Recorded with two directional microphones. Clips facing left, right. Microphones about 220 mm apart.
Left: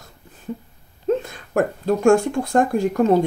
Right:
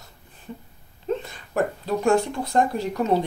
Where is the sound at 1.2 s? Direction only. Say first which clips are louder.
Left 4 dB; 45° left (ahead or behind).